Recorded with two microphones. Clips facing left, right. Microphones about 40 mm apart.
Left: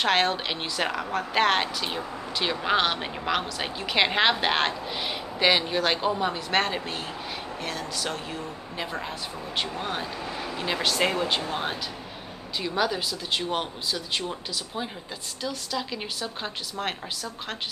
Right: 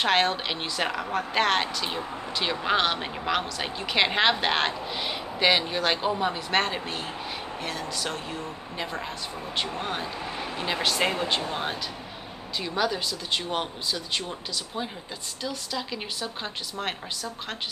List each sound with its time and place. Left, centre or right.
0.0 s a woman's voice: centre
10.2 s vehicle: right
10.6 s a woman's voice: centre
15.4 s a woman's voice: centre